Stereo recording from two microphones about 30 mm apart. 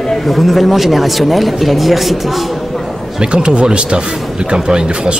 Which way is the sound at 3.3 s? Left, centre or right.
Right.